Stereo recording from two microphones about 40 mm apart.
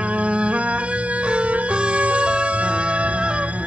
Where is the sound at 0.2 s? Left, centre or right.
Right.